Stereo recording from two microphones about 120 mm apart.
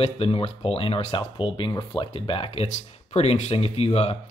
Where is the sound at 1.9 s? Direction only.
45° left (ahead or behind).